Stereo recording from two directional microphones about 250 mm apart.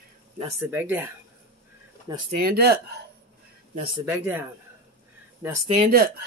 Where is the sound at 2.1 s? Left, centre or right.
Centre.